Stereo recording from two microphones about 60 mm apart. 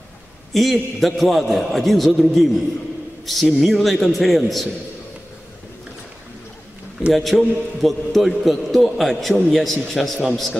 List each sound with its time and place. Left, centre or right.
0.5 s a man's voice: centre
7.2 s a man's voice: centre